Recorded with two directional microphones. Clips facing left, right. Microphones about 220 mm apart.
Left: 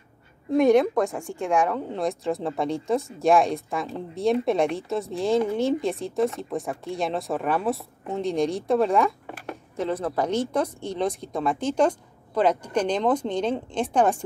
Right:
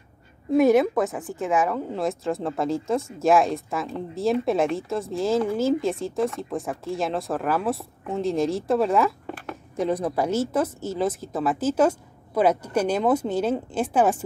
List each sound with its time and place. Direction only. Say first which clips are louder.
0.5 s a woman's voice: even; 5° right (ahead or behind)
9.8 s speech: right 2 dB; 15° right (ahead or behind)